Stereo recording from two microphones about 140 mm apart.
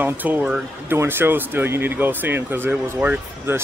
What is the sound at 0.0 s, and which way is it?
Speech, 15° right (ahead or behind).